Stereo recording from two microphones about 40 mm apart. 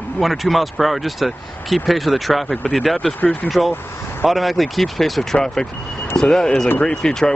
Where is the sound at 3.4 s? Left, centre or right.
Left.